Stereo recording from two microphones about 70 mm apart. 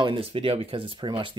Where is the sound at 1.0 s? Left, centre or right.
Right.